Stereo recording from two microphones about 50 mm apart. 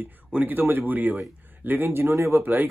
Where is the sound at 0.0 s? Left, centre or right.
Right.